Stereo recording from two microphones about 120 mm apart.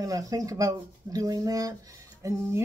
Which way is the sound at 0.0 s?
30° right (ahead or behind).